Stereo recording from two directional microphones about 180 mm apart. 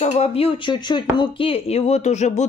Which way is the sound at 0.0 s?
35° left (ahead or behind).